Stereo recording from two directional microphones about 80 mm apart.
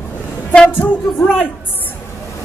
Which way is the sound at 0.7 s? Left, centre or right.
Left.